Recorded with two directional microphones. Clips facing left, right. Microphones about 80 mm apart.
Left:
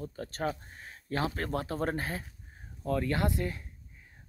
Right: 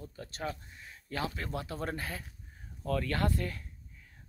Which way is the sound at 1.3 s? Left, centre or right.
Left.